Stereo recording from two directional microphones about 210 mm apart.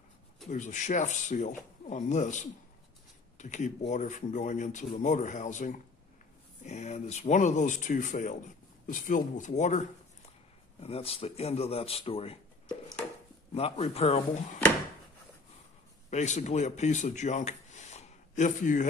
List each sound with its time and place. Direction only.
0.5 s speech: 35° left (ahead or behind)
16.1 s speech: 35° left (ahead or behind)